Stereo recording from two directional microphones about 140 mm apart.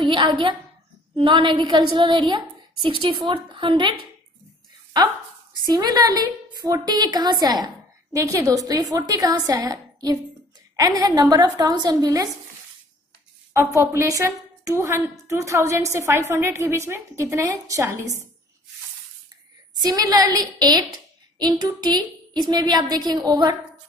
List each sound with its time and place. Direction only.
0.0 s a woman's voice: 35° right (ahead or behind)
5.7 s a woman's voice: 30° right (ahead or behind)
13.5 s a woman's voice: 20° right (ahead or behind)
19.7 s a woman's voice: 30° right (ahead or behind)